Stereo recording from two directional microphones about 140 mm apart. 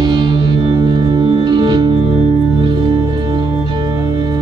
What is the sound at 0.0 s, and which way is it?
Music, 30° right (ahead or behind).